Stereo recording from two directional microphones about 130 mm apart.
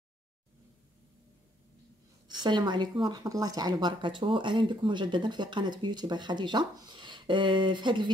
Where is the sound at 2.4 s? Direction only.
35° right (ahead or behind).